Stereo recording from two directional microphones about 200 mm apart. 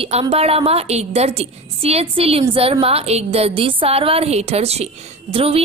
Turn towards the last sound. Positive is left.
turn(degrees=-30)  # may be behind; listen again after turning